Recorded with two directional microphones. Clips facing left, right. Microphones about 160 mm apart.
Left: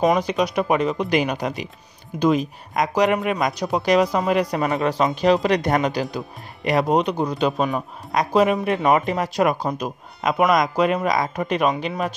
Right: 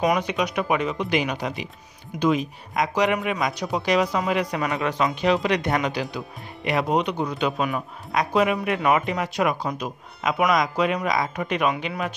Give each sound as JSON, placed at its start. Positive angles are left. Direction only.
{"t": 0.2, "sound": "speech", "side_deg": 35}